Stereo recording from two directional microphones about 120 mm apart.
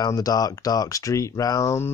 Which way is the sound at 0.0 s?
30° left (ahead or behind).